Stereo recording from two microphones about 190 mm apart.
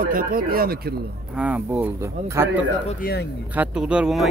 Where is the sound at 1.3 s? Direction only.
5° right (ahead or behind).